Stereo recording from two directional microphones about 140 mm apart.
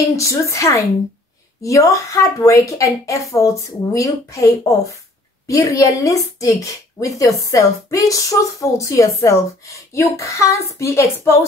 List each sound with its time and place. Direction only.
0.1 s speech: 20° left (ahead or behind)